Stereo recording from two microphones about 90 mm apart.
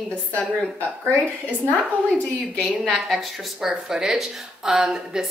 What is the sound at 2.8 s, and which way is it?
Speech, centre (ahead or behind).